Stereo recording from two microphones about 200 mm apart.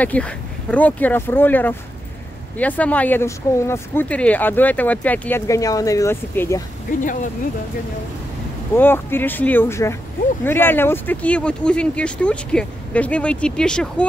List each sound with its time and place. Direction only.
0.0 s speech: 5° left (ahead or behind)
6.9 s speech: 40° left (ahead or behind)
8.7 s speech: 10° left (ahead or behind)